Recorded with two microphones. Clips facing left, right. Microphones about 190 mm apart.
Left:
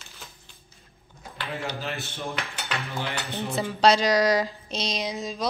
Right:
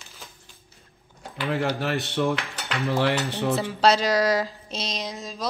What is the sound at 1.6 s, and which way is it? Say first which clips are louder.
Cutlery: right 7 dB; 70° right (ahead or behind).